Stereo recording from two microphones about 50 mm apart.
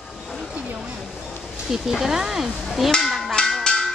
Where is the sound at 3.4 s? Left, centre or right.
Centre.